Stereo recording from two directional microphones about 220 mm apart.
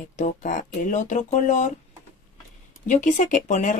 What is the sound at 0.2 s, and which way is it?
Speech, 35° left (ahead or behind).